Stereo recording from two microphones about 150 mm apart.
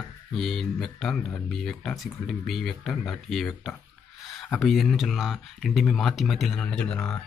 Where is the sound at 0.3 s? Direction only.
Centre (ahead or behind).